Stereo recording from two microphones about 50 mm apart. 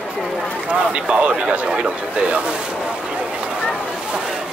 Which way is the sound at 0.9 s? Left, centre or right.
Right.